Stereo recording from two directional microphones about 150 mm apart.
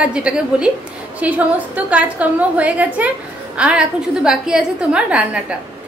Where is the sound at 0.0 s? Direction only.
5° right (ahead or behind).